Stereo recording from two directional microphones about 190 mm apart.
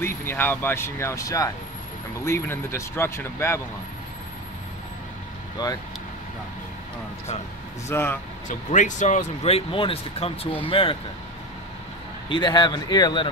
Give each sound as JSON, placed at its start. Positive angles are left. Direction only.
{"t": 0.0, "sound": "speech", "side_deg": 10}
{"t": 7.9, "sound": "speech", "side_deg": 10}
{"t": 8.5, "sound": "speech", "side_deg": 40}
{"t": 12.3, "sound": "a man's voice", "side_deg": 25}